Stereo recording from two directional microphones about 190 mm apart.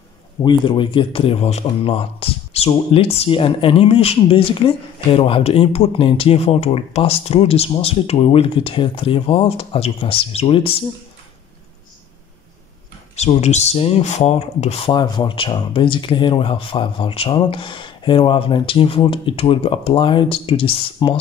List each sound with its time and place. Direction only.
0.4 s a man's voice: 25° left (ahead or behind)
13.1 s speech: 35° left (ahead or behind)